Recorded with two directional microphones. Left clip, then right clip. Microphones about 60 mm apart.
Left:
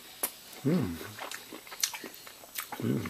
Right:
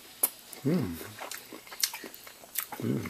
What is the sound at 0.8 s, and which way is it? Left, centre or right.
Biting, centre.